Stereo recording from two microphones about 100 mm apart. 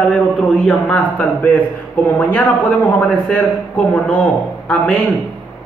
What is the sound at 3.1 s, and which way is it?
Speech, 10° left (ahead or behind).